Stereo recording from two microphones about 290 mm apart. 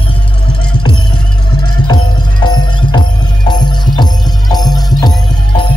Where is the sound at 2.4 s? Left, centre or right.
Centre.